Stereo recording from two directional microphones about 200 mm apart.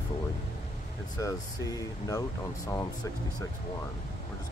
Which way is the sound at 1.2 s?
15° left (ahead or behind).